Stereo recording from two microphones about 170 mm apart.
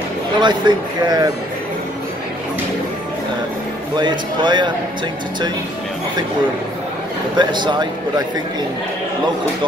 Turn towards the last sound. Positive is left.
turn(degrees=-25)  # may be behind; listen again after turning